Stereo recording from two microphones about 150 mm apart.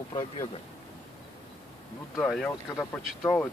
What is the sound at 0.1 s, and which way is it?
Speech, 30° left (ahead or behind).